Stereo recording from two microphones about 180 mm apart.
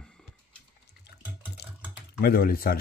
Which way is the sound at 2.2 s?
55° left (ahead or behind).